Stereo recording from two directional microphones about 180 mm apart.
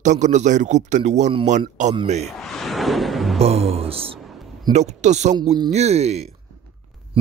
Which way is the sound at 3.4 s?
35° right (ahead or behind).